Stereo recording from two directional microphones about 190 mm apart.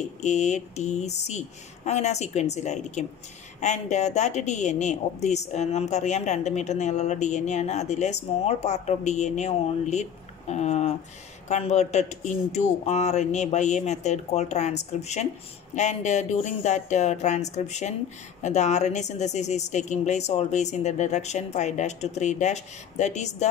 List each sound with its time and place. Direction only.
0.2 s speech: 40° left (ahead or behind)